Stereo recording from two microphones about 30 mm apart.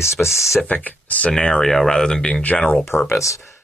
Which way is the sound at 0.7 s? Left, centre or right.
Left.